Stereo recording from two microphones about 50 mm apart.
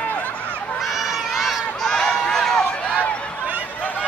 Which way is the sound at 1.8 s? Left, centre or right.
Centre.